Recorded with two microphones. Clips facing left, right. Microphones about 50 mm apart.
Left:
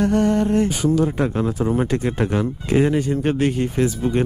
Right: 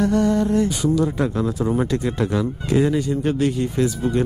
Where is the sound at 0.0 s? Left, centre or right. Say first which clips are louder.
Left 1 dB; left.